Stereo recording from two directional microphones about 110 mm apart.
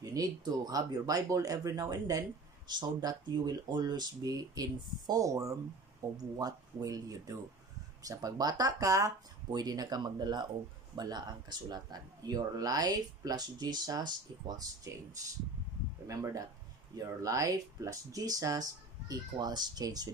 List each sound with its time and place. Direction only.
0.0 s speech: 35° right (ahead or behind)
16.1 s speech: 30° right (ahead or behind)